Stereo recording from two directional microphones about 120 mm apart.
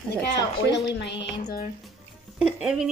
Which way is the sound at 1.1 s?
45° left (ahead or behind).